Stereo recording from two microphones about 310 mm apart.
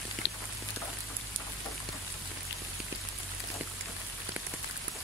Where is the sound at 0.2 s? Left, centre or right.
Left.